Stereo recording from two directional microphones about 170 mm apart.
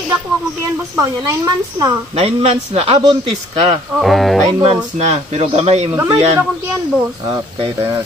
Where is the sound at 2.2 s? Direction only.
35° right (ahead or behind).